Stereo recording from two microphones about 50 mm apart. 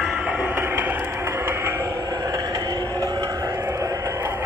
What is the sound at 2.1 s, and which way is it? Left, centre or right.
Vehicle, right.